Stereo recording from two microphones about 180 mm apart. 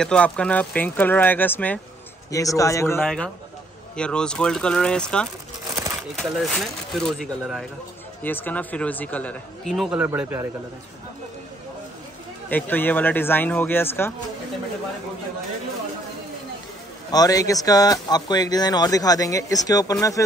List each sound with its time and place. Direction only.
0.0 s a man's voice: 5° left (ahead or behind)
3.0 s a man's voice: 5° left (ahead or behind); by 10.5 s 10° right (ahead or behind)
12.4 s a man's voice: 10° left (ahead or behind)
17.1 s speech: 20° left (ahead or behind)